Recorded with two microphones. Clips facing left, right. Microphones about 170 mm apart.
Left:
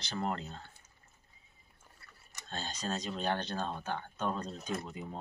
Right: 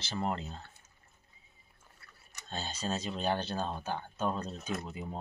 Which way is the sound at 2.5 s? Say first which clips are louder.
Right 2 dB; 5° right (ahead or behind).